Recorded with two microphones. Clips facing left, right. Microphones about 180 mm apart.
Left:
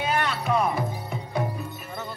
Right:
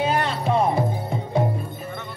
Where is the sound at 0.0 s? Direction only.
30° right (ahead or behind).